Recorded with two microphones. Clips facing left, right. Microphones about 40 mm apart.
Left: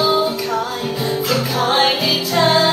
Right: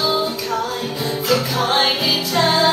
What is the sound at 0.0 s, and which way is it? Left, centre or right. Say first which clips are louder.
Music: left 3 dB; centre.